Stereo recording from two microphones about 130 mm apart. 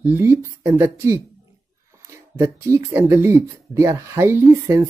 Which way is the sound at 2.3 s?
20° right (ahead or behind).